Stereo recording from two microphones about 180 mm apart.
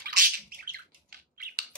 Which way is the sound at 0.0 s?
55° right (ahead or behind).